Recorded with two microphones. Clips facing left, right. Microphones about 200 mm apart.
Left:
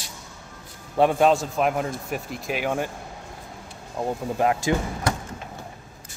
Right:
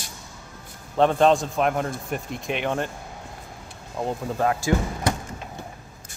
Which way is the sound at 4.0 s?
5° left (ahead or behind).